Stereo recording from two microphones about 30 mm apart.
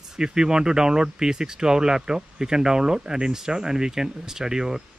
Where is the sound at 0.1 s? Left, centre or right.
Right.